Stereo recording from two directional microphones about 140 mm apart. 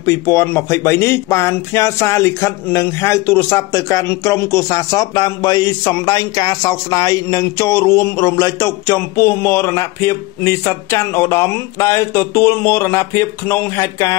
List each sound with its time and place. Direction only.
0.0 s speech: 20° left (ahead or behind)